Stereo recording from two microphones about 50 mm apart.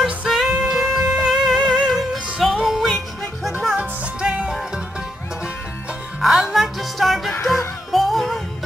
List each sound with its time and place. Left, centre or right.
0.0 s music: centre
3.7 s music: right
6.2 s music: centre